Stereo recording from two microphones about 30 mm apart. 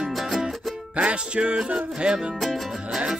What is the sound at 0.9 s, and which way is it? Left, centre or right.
Music, right.